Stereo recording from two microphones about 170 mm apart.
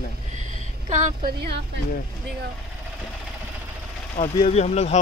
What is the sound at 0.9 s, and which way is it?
Speech, 45° right (ahead or behind).